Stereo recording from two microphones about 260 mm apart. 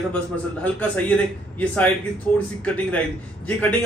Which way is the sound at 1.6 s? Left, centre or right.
Centre.